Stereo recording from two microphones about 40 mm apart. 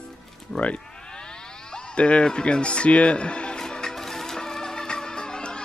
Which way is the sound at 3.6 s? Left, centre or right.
Centre.